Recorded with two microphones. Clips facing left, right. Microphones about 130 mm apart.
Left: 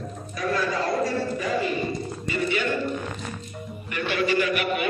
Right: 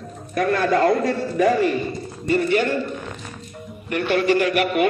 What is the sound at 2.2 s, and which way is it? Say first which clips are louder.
Speech: right 8 dB; 60° right (ahead or behind).